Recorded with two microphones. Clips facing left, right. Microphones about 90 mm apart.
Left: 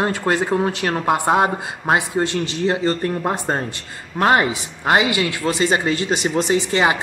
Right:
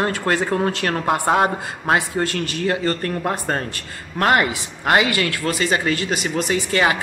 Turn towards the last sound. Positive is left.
turn(degrees=20)  # may be behind; listen again after turning